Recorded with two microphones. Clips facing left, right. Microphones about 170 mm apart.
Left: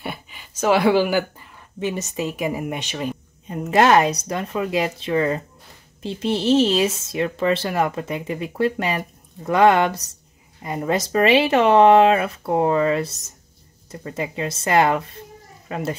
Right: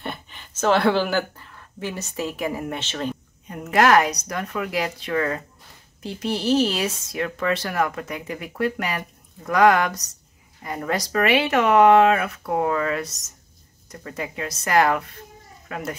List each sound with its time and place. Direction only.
0.0 s speech: 5° left (ahead or behind)
3.4 s speech: 25° left (ahead or behind)